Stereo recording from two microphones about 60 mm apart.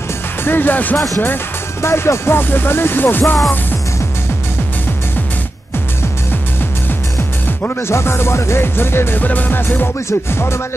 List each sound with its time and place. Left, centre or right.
0.4 s speech: left
1.8 s music: left
7.9 s music: left
10.0 s music: left